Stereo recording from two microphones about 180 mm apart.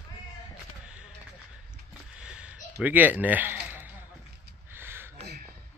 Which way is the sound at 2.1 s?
5° right (ahead or behind).